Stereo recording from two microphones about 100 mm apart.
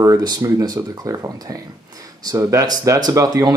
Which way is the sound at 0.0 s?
40° right (ahead or behind).